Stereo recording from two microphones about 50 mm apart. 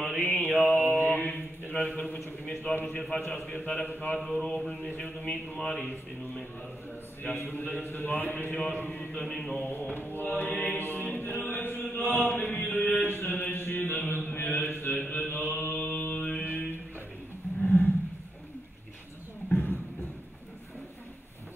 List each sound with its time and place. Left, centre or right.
0.2 s mantra: left
1.7 s a man's voice: left
4.4 s mantra: centre
4.8 s speech: left
5.6 s a man's voice: centre
7.3 s a man's voice: left
9.7 s a man's voice: left
10.1 s chant: left
12.4 s mantra: left
17.6 s a sound: left
19.5 s a sound: left